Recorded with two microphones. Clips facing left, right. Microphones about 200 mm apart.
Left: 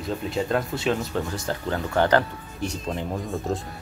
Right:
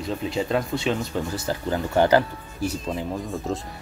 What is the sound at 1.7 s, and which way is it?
Speech, 20° right (ahead or behind).